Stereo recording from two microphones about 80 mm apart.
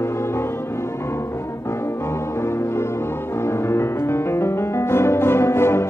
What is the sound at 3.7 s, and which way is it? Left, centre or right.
Music, left.